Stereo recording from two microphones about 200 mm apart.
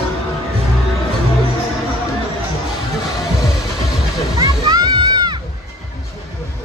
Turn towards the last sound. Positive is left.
turn(degrees=-20)  # may be behind; listen again after turning